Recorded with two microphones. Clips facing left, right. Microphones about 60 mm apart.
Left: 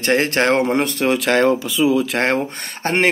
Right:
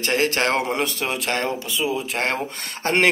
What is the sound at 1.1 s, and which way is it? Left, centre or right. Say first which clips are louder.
Speech: left 9 dB; left.